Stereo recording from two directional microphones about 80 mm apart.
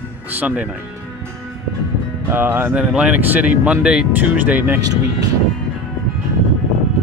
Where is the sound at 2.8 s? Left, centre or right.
Centre.